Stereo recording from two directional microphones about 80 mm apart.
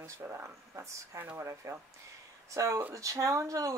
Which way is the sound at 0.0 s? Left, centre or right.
Right.